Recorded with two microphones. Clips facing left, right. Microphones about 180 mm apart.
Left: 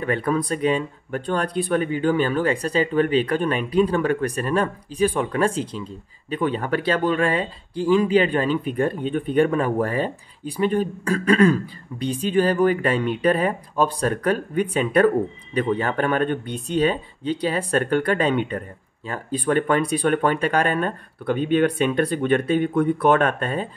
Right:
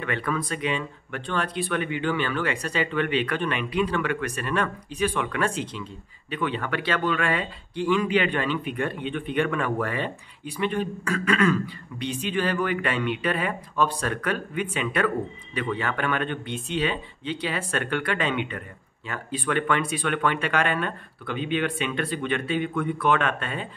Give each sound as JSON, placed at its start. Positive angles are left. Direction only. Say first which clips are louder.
{"t": 0.0, "sound": "speech", "louder": "left 6 dB", "side_deg": 40}